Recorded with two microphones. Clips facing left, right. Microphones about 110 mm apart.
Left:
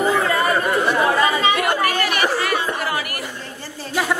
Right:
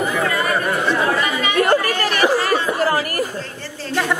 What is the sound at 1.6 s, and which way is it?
Chatter, 40° right (ahead or behind).